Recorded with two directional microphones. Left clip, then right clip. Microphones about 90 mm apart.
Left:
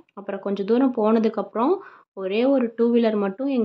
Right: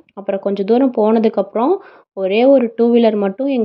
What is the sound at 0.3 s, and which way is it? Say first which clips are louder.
Speech: right 8 dB; 50° right (ahead or behind).